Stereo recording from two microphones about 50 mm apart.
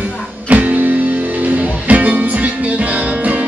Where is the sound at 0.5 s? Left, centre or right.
Right.